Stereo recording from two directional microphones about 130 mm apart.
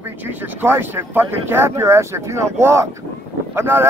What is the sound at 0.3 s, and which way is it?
Speech, 15° right (ahead or behind).